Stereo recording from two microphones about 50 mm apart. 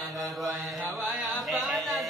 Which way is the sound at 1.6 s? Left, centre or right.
Centre.